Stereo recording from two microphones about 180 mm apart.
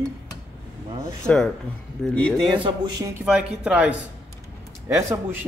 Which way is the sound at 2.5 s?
25° right (ahead or behind).